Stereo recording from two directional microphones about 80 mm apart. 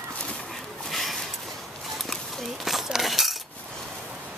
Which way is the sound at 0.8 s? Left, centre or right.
Centre.